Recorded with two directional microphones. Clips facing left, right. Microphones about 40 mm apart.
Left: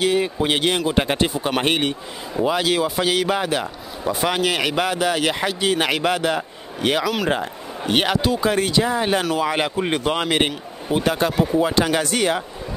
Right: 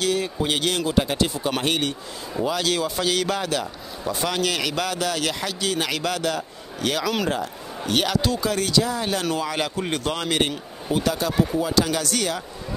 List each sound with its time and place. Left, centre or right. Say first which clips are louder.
0.0 s a man's voice: left 4 dB; left
0.9 s a man's voice: left 2 dB; left
9.2 s speech: left 4 dB; centre
9.5 s a man's voice: left 4 dB; left